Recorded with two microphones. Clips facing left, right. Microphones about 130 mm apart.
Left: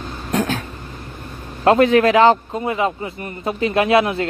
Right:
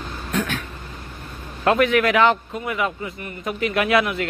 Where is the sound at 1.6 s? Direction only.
30° left (ahead or behind).